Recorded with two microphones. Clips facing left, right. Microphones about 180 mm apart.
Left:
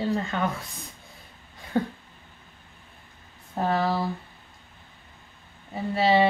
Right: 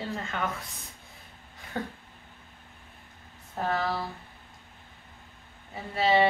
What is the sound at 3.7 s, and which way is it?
Speech, 30° left (ahead or behind).